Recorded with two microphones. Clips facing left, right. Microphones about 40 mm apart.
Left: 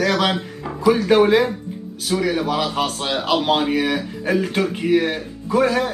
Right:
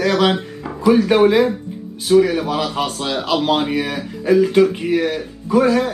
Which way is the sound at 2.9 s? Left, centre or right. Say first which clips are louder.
Right 1 dB; left.